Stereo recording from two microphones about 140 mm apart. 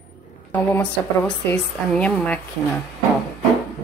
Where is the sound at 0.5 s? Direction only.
10° left (ahead or behind).